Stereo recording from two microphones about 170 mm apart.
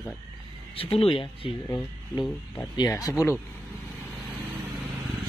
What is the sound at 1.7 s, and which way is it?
Speech, 15° left (ahead or behind).